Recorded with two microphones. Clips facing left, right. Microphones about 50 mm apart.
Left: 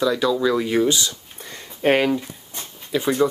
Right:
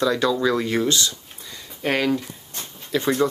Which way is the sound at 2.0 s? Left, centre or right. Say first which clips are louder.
Left 1 dB; centre.